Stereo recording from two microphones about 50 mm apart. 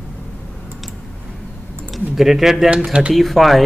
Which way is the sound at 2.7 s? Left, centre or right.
Centre.